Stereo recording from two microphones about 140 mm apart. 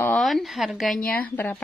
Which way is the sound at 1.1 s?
10° left (ahead or behind).